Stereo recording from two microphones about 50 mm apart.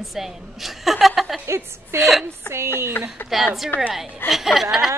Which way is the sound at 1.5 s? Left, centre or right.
Right.